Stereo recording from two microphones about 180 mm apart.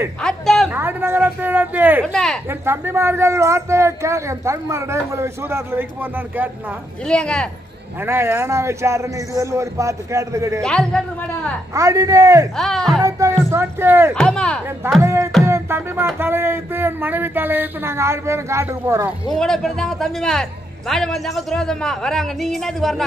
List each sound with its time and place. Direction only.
0.2 s a sound: 5° left (ahead or behind)
0.7 s speech: 10° right (ahead or behind)
7.1 s a woman's voice: 5° left (ahead or behind)
8.0 s speech: 15° right (ahead or behind)
10.6 s a woman's voice: 5° left (ahead or behind)
11.7 s a man's voice: 20° right (ahead or behind)
12.5 s a woman's voice: centre (ahead or behind)
13.0 s speech: 15° right (ahead or behind)
14.1 s a woman's voice: 5° left (ahead or behind)
15.0 s speech: 15° right (ahead or behind)
15.4 s music: 15° right (ahead or behind)
16.2 s speech: 15° right (ahead or behind)
19.3 s a woman's voice: 5° left (ahead or behind)